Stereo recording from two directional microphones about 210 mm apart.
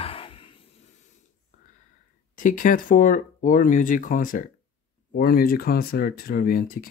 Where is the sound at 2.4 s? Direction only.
40° left (ahead or behind).